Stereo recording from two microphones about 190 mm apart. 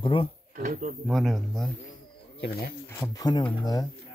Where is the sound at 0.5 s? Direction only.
45° right (ahead or behind).